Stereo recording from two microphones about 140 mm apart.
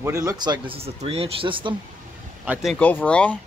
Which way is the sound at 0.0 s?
20° right (ahead or behind).